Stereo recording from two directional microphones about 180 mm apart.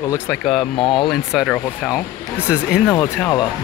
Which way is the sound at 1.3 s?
5° right (ahead or behind).